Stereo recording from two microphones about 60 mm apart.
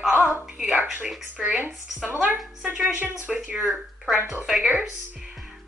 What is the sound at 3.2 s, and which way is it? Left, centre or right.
Speech, right.